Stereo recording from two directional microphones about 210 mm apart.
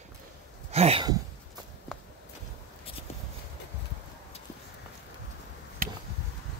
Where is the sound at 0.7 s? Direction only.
30° right (ahead or behind).